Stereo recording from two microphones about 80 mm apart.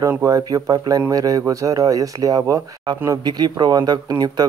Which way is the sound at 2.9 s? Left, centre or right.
Right.